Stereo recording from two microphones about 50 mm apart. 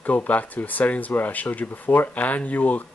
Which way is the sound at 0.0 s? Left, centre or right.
Left.